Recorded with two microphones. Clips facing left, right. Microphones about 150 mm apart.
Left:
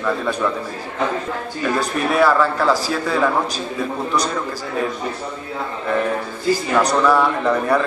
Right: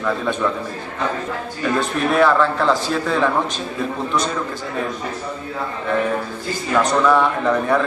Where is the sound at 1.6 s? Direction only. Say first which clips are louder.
Right 1 dB; centre (ahead or behind).